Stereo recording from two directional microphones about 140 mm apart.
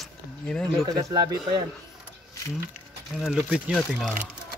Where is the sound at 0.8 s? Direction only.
25° right (ahead or behind).